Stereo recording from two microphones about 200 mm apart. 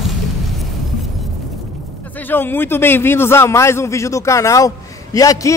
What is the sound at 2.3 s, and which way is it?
A man's voice, 10° left (ahead or behind).